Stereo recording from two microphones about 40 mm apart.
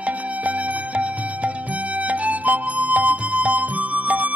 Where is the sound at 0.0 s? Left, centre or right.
Right.